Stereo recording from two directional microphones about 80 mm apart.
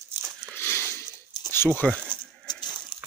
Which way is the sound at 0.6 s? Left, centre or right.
Left.